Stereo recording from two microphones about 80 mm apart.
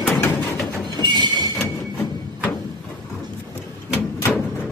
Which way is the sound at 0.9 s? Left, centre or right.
Right.